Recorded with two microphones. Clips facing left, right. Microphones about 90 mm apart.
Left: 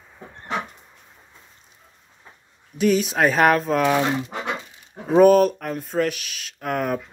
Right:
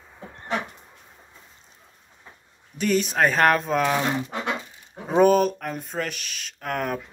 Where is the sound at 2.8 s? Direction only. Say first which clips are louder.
Left 3 dB; centre (ahead or behind).